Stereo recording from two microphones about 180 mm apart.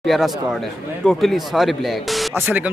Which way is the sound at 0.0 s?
Centre (ahead or behind).